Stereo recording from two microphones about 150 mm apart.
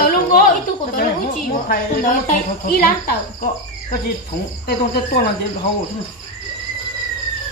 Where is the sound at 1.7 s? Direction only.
65° left (ahead or behind); by 3.2 s 85° left.